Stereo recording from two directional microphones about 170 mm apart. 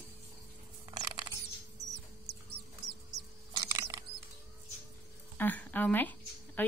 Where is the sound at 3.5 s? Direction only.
20° right (ahead or behind).